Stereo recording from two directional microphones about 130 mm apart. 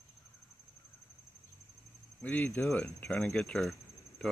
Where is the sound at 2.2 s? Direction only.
10° left (ahead or behind).